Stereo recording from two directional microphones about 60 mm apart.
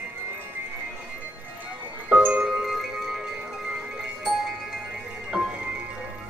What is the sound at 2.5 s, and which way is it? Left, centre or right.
Music, centre.